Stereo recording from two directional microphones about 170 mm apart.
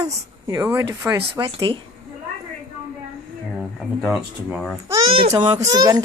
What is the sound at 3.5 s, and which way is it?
Speech, 5° right (ahead or behind).